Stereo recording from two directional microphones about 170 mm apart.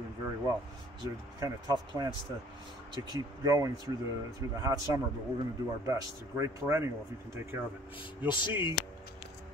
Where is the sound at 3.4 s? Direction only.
20° right (ahead or behind).